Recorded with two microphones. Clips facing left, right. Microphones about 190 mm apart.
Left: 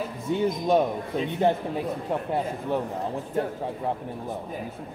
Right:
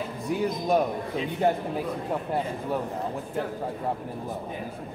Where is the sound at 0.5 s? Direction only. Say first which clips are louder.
Left 2 dB; centre (ahead or behind).